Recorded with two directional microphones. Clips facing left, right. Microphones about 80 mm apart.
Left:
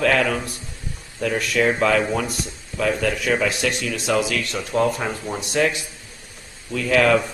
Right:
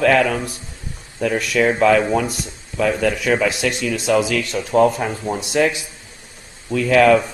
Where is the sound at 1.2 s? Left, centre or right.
Centre.